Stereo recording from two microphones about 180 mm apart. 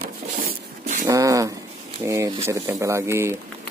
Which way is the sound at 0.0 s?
50° right (ahead or behind).